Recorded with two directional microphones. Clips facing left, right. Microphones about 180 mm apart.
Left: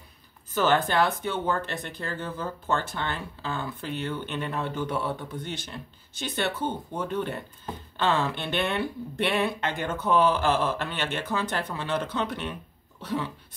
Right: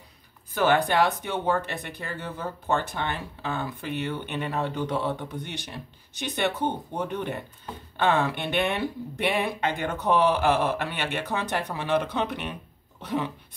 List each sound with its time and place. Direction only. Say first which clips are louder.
0.6 s speech: right 1 dB; 15° right (ahead or behind)